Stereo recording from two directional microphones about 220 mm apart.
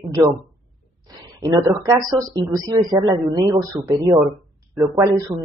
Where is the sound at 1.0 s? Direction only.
15° right (ahead or behind).